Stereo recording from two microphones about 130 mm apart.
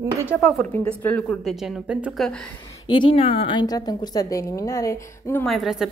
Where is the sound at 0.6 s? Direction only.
10° left (ahead or behind).